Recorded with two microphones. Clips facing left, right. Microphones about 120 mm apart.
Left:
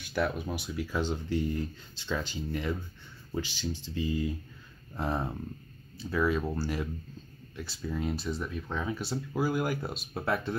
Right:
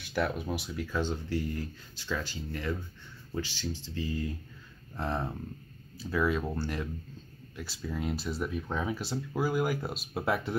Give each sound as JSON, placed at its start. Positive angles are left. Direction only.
{"t": 0.1, "sound": "speech", "side_deg": 0}
{"t": 0.9, "sound": "speech", "side_deg": 15}
{"t": 5.9, "sound": "speech", "side_deg": 0}